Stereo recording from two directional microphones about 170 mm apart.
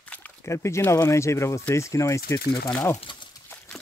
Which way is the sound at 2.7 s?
5° left (ahead or behind).